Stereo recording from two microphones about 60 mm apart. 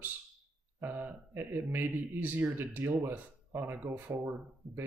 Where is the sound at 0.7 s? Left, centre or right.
Right.